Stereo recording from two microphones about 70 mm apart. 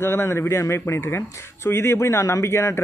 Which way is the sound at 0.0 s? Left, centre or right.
Left.